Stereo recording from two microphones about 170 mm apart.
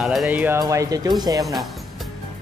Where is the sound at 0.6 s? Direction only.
20° right (ahead or behind).